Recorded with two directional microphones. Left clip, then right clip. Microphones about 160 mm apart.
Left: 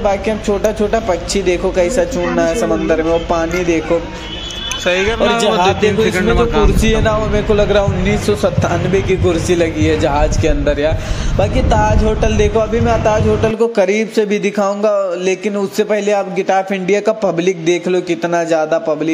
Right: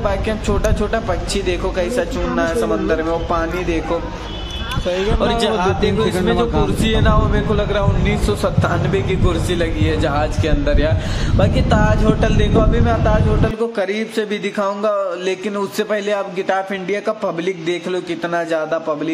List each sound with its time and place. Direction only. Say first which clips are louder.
0.0 s speech: left 5 dB; 15° left (ahead or behind)
5.2 s speech: left 5 dB; 15° left (ahead or behind)